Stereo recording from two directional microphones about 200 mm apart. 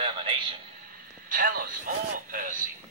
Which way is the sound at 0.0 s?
25° right (ahead or behind).